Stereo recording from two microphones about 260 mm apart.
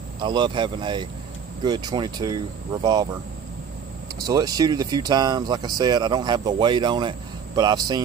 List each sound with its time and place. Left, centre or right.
0.2 s speech: centre
4.3 s speech: centre